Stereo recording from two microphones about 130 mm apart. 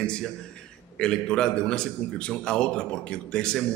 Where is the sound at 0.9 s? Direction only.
5° left (ahead or behind).